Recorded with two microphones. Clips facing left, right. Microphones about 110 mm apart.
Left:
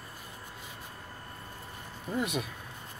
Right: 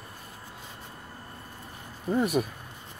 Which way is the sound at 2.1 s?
40° right (ahead or behind).